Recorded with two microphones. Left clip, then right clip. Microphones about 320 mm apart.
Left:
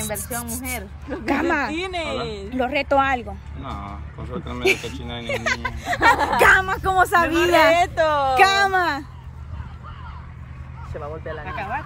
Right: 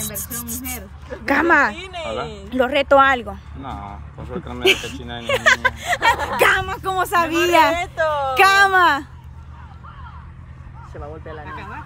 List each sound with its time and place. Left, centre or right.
0.0 s speech: centre
1.2 s speech: centre
1.8 s speech: left
2.5 s speech: centre
4.5 s speech: centre
7.7 s speech: left
8.4 s speech: centre